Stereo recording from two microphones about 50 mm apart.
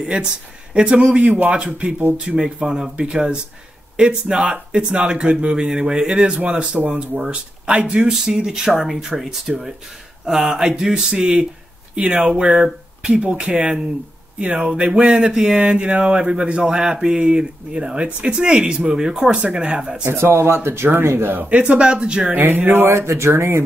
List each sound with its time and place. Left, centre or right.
0.0 s speech: centre
20.1 s speech: right
21.5 s speech: right
22.3 s speech: right
22.9 s speech: right